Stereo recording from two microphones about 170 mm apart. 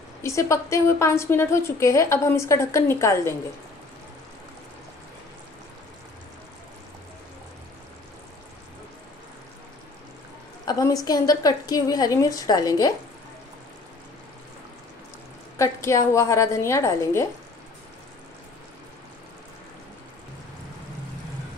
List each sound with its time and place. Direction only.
0.2 s a woman's voice: 20° left (ahead or behind)
10.6 s a woman's voice: 20° left (ahead or behind)
15.5 s a woman's voice: 15° left (ahead or behind)